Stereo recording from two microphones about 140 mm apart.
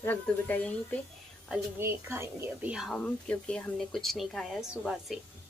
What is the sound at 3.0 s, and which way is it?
Speech, 10° left (ahead or behind).